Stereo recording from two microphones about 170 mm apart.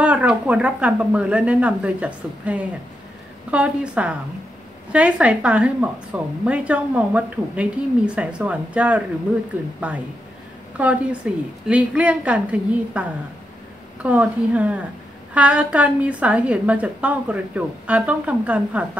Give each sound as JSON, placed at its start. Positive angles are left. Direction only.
{"t": 0.0, "sound": "a woman's voice", "side_deg": -5}
{"t": 10.8, "sound": "a woman's voice", "side_deg": -10}